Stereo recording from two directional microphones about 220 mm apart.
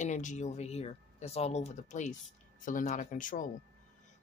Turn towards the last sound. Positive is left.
turn(degrees=35)  # may be behind; listen again after turning